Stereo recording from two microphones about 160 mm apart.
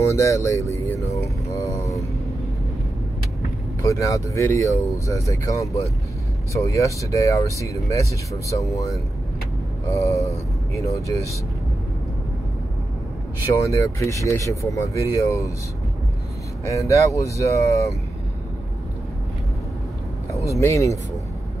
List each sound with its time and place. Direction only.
0.0 s speech: 20° left (ahead or behind)
3.8 s speech: 20° left (ahead or behind)
13.7 s speech: 20° left (ahead or behind)
16.8 s speech: 20° left (ahead or behind)
20.5 s speech: 20° left (ahead or behind)